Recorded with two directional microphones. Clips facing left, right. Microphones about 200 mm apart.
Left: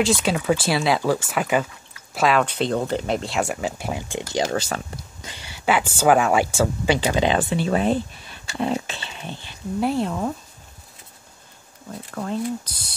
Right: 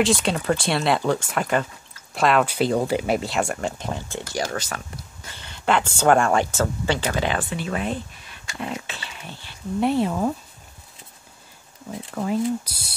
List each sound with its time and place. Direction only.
0.0 s speech: centre (ahead or behind)
4.3 s speech: 20° left (ahead or behind)
5.3 s speech: 10° left (ahead or behind)
9.8 s speech: centre (ahead or behind)
11.9 s speech: 5° right (ahead or behind)